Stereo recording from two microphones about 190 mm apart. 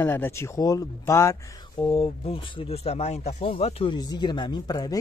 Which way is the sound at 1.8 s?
30° left (ahead or behind).